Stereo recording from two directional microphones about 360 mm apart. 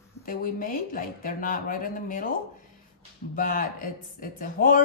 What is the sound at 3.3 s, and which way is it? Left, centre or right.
A woman's voice, left.